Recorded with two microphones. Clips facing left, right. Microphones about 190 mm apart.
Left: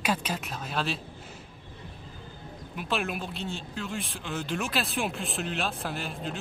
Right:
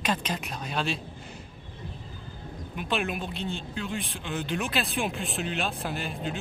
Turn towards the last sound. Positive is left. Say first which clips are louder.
# right 2 dB
turn(degrees=0)  # may be behind; listen again after turning